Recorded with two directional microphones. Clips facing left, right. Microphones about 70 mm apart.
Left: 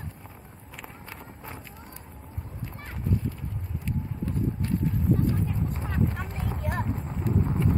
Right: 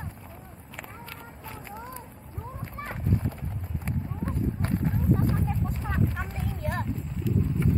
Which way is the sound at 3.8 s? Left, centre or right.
Right.